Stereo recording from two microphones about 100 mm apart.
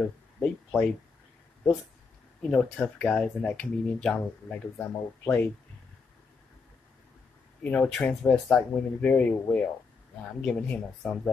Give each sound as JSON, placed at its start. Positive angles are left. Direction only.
{"t": 0.0, "sound": "a sound", "side_deg": 15}
{"t": 2.4, "sound": "speech", "side_deg": 5}
{"t": 7.6, "sound": "speech", "side_deg": 15}
{"t": 7.9, "sound": "speech", "side_deg": 5}